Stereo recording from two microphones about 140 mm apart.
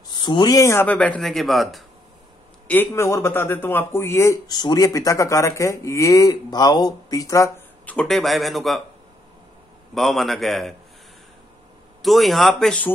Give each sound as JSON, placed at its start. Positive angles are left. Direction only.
{"t": 0.1, "sound": "speech", "side_deg": 35}
{"t": 2.7, "sound": "speech", "side_deg": 15}
{"t": 7.8, "sound": "a man's voice", "side_deg": 10}
{"t": 9.9, "sound": "a man's voice", "side_deg": 0}
{"t": 12.0, "sound": "a man's voice", "side_deg": 0}